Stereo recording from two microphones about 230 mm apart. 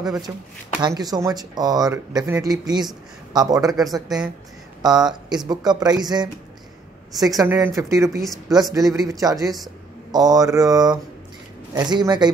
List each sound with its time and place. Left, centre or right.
0.3 s speech: centre